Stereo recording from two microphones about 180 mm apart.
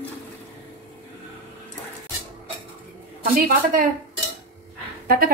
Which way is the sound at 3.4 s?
55° right (ahead or behind).